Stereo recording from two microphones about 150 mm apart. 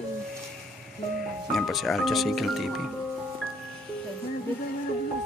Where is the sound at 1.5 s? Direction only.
Centre (ahead or behind).